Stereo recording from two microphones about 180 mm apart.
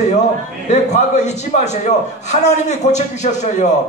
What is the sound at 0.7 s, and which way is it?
A man's voice, 40° left (ahead or behind).